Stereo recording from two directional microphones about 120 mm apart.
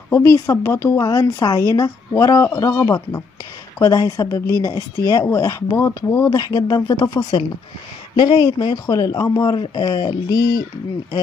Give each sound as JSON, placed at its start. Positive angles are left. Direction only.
{"t": 0.1, "sound": "speech", "side_deg": 25}
{"t": 1.0, "sound": "speech", "side_deg": 35}